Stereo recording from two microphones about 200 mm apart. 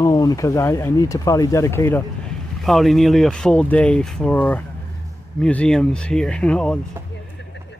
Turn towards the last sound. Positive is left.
turn(degrees=5)  # may be behind; listen again after turning